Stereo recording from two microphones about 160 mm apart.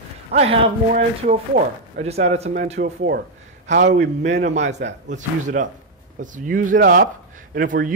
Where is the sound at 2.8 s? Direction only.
75° right (ahead or behind).